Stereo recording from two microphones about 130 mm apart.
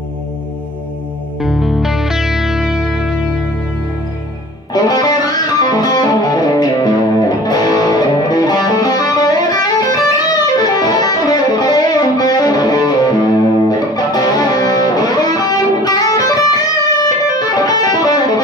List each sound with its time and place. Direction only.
1.4 s music: centre (ahead or behind)
4.7 s music: 30° left (ahead or behind)